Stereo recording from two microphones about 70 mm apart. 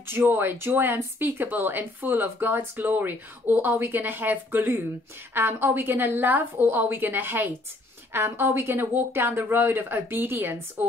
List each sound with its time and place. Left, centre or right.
0.0 s speech: right